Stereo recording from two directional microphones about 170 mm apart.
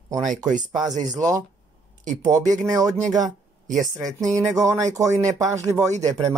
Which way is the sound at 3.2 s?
45° right (ahead or behind).